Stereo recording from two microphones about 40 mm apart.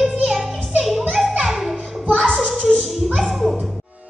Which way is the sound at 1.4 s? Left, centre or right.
Centre.